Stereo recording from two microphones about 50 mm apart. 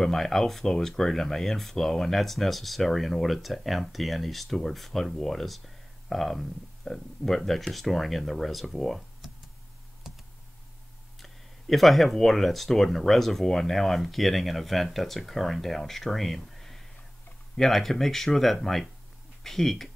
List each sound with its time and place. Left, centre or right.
0.0 s speech: centre
11.1 s speech: centre